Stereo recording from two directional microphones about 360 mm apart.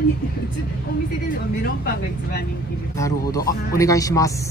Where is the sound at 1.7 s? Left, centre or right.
Left.